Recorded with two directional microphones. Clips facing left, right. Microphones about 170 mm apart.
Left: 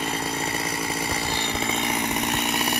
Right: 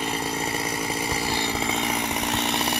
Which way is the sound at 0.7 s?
20° right (ahead or behind).